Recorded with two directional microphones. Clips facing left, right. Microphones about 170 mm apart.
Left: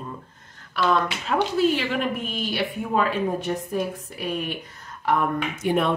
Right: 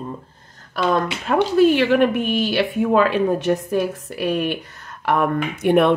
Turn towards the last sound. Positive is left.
turn(degrees=-60)  # may be behind; listen again after turning